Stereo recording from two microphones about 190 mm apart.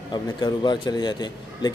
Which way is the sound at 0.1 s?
25° left (ahead or behind).